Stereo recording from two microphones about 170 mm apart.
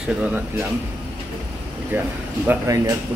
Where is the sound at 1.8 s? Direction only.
10° right (ahead or behind).